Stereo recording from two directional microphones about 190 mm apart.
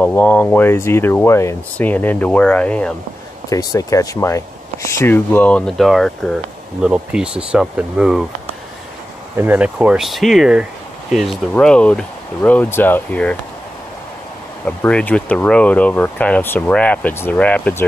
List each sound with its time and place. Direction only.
0.0 s speech: 10° left (ahead or behind)
3.4 s speech: 15° left (ahead or behind); by 8.3 s 5° right (ahead or behind)
9.4 s speech: 10° right (ahead or behind); by 13.4 s 5° left (ahead or behind)
14.6 s speech: 5° left (ahead or behind)